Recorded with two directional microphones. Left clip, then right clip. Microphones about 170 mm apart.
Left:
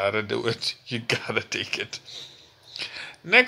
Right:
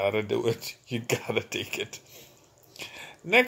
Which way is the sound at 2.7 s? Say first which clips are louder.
Left 7 dB; 5° right (ahead or behind).